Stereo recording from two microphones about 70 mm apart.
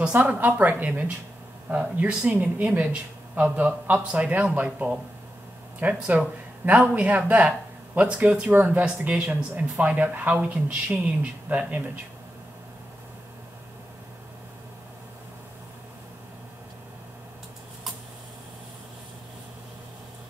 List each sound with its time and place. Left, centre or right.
0.1 s speech: right